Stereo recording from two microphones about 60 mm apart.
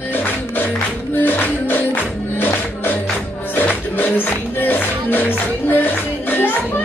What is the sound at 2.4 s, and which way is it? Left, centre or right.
Music, left.